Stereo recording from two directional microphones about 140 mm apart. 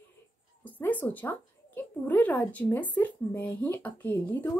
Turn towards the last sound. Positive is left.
turn(degrees=15)  # may be behind; listen again after turning